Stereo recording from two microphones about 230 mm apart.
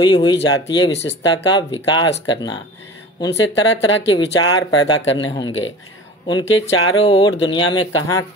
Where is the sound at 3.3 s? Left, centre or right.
Left.